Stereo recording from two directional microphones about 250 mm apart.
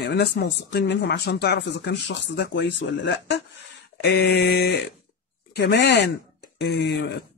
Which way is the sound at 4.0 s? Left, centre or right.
Left.